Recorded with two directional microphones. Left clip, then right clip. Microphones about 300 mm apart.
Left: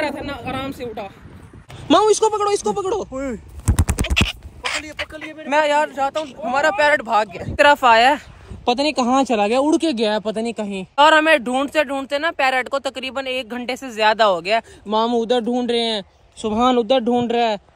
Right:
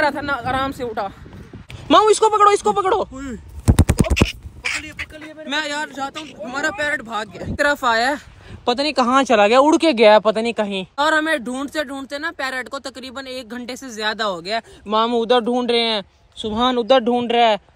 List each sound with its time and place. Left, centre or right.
0.0 s speech: centre
2.3 s speech: right
3.6 s scratch: centre
5.4 s speech: centre
8.7 s speech: centre
11.0 s speech: centre